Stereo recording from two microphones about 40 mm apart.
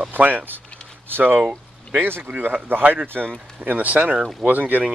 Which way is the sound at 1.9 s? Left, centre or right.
Right.